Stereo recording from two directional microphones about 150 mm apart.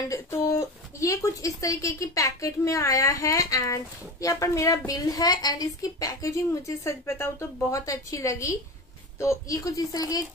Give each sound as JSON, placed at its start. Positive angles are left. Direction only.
{"t": 0.1, "sound": "speech", "side_deg": 20}